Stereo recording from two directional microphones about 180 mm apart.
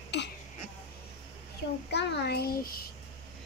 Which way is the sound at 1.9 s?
60° left (ahead or behind).